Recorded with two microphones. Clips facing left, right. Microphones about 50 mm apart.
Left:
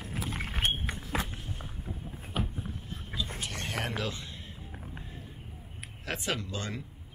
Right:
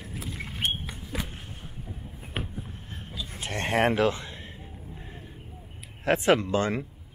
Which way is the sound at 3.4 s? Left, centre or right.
Right.